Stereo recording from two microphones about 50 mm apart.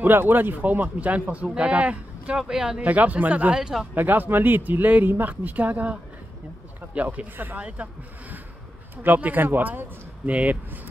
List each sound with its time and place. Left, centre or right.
0.0 s speech: right
2.3 s speech: centre
2.8 s speech: right
3.5 s speech: centre
3.9 s speech: right
7.6 s speech: right
8.9 s speech: right